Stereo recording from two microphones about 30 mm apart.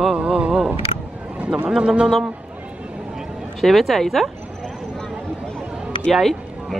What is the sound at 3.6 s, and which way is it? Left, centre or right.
Speech, centre.